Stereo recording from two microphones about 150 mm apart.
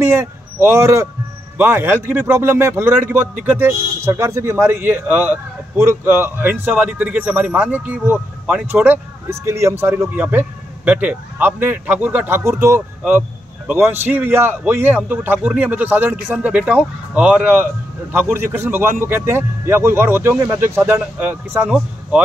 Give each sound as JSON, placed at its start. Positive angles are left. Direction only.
{"t": 0.0, "sound": "a man's voice", "side_deg": -15}